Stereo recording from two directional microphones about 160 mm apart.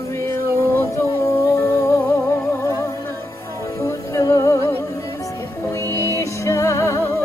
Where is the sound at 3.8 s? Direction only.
20° left (ahead or behind).